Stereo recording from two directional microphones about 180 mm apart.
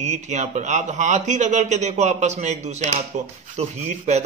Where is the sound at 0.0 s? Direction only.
40° right (ahead or behind).